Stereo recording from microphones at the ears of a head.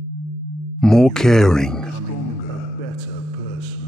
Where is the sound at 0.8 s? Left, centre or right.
Centre.